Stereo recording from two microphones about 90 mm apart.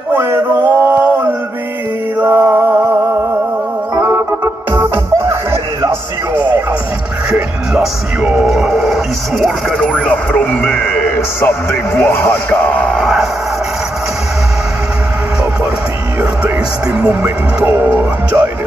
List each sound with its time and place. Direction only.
0.1 s a sound: 25° right (ahead or behind)
2.1 s mantra: 20° right (ahead or behind)
4.7 s music: 25° right (ahead or behind)
7.2 s speech: 10° right (ahead or behind)
16.8 s speech: 15° right (ahead or behind)
17.6 s music: 20° right (ahead or behind)